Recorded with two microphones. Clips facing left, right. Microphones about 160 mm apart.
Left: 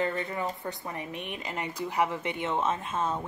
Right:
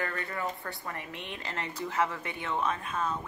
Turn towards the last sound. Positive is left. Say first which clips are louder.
# left 2 dB
turn(degrees=25)  # may be behind; listen again after turning